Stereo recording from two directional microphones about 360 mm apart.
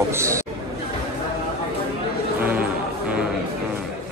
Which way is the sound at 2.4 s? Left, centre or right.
Centre.